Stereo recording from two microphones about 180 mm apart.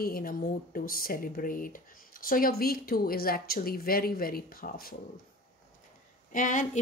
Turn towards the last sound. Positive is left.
turn(degrees=45)  # may be behind; listen again after turning